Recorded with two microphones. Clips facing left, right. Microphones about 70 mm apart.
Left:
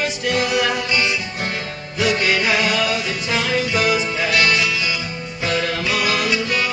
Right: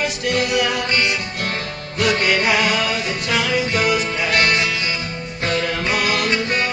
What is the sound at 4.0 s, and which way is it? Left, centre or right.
Music, right.